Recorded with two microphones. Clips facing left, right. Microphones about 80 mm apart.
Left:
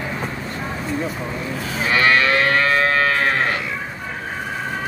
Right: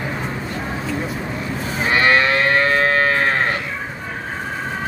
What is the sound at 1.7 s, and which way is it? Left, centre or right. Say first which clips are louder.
Moo: right 1 dB; right.